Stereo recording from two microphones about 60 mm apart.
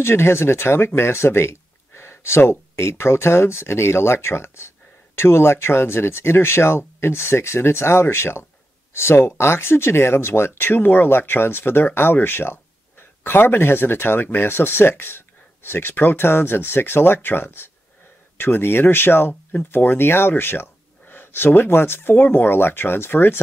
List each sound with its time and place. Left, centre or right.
0.0 s speech: left